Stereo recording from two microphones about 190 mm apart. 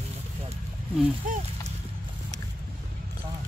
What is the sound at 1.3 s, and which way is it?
Speech, 45° right (ahead or behind).